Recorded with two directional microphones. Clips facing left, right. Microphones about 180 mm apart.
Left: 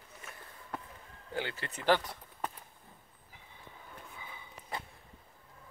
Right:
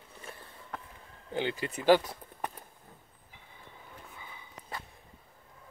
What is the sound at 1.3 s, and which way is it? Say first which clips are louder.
Speech: right 5 dB; 15° right (ahead or behind).